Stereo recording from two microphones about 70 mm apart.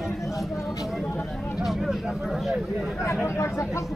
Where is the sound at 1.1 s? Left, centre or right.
Left.